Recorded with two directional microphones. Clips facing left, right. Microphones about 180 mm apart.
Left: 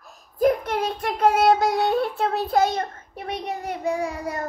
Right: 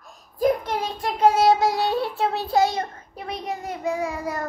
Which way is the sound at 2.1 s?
50° left (ahead or behind).